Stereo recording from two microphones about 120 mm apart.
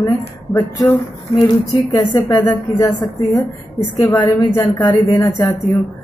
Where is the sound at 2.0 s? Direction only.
30° left (ahead or behind).